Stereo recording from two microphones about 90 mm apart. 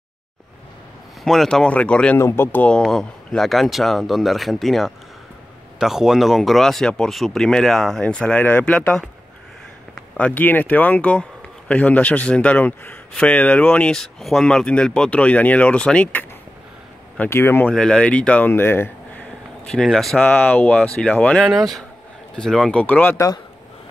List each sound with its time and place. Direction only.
1.2 s speech: 5° left (ahead or behind)
2.1 s speech: 30° left (ahead or behind)
2.7 s speech: 5° left (ahead or behind)
13.9 s speech: 5° left (ahead or behind)
17.3 s speech: 30° left (ahead or behind)
17.6 s speech: 10° left (ahead or behind)
18.5 s speech: 25° left (ahead or behind)
19.6 s speech: 5° left (ahead or behind)
20.2 s speech: 20° left (ahead or behind)
23.1 s speech: 40° left (ahead or behind)